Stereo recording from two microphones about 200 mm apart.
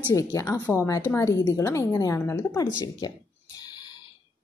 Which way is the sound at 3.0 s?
20° left (ahead or behind).